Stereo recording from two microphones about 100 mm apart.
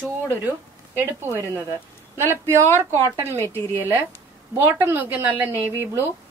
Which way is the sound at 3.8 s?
20° right (ahead or behind).